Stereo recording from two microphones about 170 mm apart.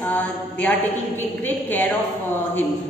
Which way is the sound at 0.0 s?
10° left (ahead or behind).